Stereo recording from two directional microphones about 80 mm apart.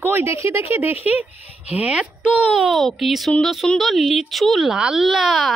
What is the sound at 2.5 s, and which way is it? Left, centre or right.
Speech, centre.